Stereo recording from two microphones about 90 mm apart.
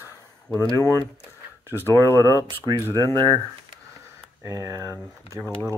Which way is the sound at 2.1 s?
30° left (ahead or behind).